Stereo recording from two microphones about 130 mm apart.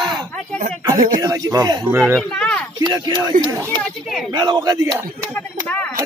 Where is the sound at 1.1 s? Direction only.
25° right (ahead or behind).